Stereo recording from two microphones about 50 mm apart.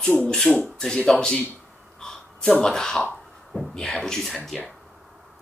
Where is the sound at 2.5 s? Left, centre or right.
Centre.